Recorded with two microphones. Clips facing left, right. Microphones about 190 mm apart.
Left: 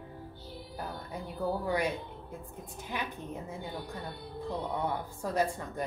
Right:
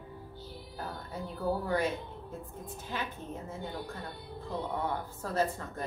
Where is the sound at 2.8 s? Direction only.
15° left (ahead or behind).